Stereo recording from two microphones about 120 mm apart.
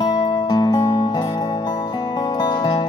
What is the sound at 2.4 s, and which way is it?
Music, 40° left (ahead or behind).